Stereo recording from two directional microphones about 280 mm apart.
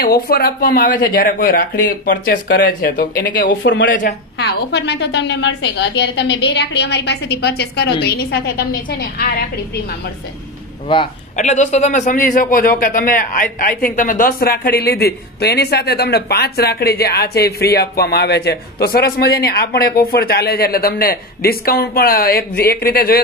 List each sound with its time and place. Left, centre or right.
0.0 s a man's voice: left
10.9 s a man's voice: left